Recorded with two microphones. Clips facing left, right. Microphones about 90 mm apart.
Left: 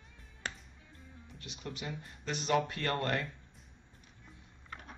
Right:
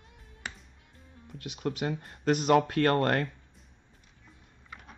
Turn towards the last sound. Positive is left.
turn(degrees=-50)  # may be behind; listen again after turning